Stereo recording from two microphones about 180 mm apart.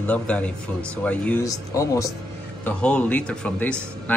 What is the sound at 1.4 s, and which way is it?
Speech, 20° left (ahead or behind).